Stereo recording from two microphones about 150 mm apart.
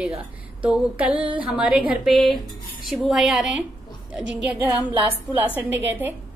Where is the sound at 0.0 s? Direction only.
5° right (ahead or behind).